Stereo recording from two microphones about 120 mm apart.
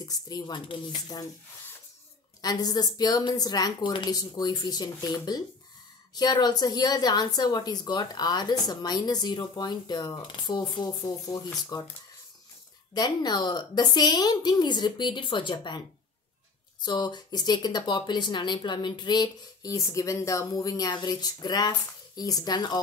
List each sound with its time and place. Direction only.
0.0 s speech: 35° left (ahead or behind)
2.4 s speech: 35° left (ahead or behind)
12.9 s speech: 35° left (ahead or behind)
16.8 s speech: 35° left (ahead or behind)